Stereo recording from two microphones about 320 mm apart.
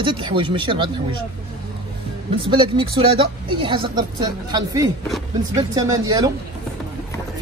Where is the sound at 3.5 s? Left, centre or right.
Centre.